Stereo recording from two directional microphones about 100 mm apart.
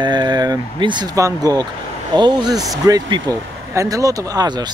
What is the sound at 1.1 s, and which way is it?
Speech, 35° right (ahead or behind).